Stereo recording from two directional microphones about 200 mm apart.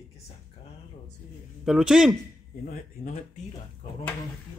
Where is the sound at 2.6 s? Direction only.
45° left (ahead or behind).